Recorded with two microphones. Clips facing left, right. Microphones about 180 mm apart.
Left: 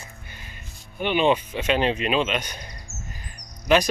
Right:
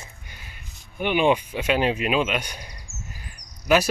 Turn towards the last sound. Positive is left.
turn(degrees=-5)  # may be behind; listen again after turning